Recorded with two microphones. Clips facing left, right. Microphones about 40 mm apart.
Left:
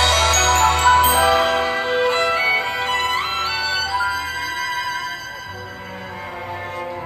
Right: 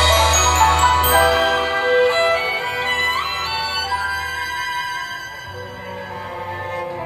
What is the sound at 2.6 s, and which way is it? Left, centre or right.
Music, right.